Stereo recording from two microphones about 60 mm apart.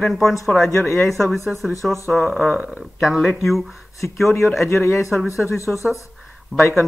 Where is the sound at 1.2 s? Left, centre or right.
Centre.